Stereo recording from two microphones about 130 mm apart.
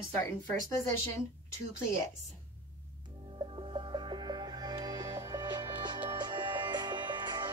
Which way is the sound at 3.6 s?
40° right (ahead or behind).